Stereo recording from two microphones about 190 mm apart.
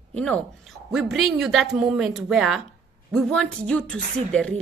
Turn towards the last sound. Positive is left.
turn(degrees=5)  # may be behind; listen again after turning